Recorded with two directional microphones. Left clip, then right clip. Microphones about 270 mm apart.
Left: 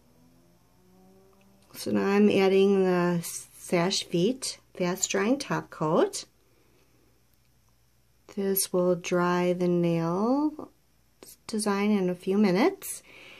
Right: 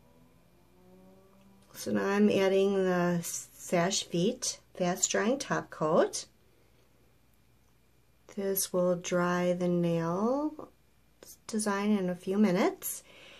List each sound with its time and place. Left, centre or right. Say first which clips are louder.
1.7 s speech: left 4 dB; left
8.3 s speech: left 4 dB; left